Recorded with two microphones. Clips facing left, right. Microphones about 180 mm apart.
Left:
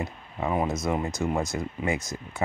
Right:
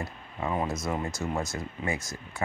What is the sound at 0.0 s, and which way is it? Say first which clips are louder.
Speech: left 3 dB; 20° left (ahead or behind).